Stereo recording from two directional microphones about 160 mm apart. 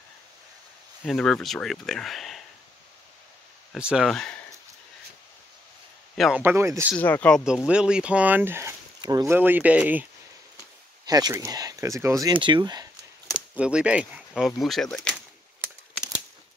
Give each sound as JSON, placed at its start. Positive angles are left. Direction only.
{"t": 1.0, "sound": "speech", "side_deg": 5}
{"t": 3.7, "sound": "speech", "side_deg": -5}
{"t": 6.1, "sound": "speech", "side_deg": 0}
{"t": 6.4, "sound": "speech", "side_deg": -15}
{"t": 7.0, "sound": "speech", "side_deg": 10}
{"t": 7.4, "sound": "speech", "side_deg": -5}
{"t": 11.1, "sound": "speech", "side_deg": -25}
{"t": 13.3, "sound": "speech", "side_deg": -5}